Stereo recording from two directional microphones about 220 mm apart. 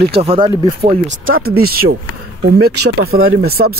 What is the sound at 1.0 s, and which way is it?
Speech, 65° right (ahead or behind).